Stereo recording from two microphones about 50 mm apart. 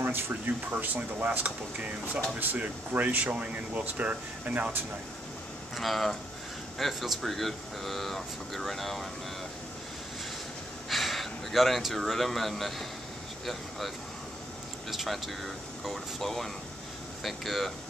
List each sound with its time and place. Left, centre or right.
0.0 s speech: right
5.8 s speech: centre
10.9 s speech: centre